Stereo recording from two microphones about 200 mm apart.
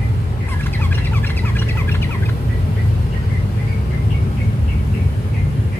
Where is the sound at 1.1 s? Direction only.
10° left (ahead or behind).